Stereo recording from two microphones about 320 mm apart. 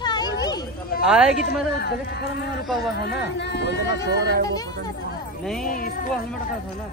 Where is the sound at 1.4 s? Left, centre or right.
Left.